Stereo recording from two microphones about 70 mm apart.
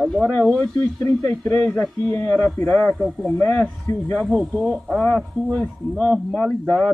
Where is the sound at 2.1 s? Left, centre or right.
Left.